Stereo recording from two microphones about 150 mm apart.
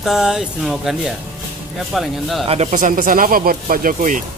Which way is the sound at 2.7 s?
60° right (ahead or behind).